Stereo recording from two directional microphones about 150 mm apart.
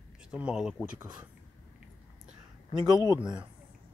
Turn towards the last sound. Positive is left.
turn(degrees=20)  # may be behind; listen again after turning